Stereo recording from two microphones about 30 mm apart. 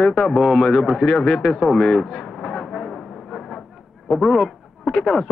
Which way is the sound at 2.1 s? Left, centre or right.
Centre.